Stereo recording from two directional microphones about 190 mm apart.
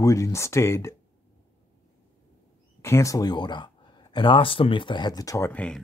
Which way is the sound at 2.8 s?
15° left (ahead or behind).